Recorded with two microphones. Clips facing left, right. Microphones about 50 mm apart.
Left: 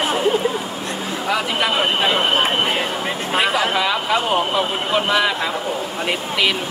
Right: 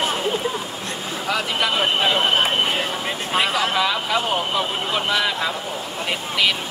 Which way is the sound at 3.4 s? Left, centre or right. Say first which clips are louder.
Left 2 dB; centre.